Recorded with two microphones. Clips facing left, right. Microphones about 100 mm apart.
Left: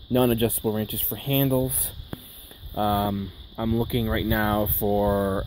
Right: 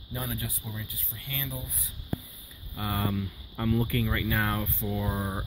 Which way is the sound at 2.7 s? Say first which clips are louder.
Left 10 dB; 30° left (ahead or behind).